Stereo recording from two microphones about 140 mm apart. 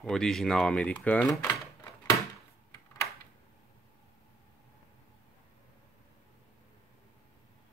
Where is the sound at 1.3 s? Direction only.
25° left (ahead or behind).